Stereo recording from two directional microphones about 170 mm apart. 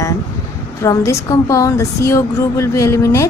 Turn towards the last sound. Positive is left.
turn(degrees=15)  # may be behind; listen again after turning